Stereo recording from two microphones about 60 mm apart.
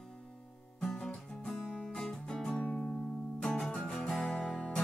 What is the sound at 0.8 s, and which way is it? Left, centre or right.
Music, centre.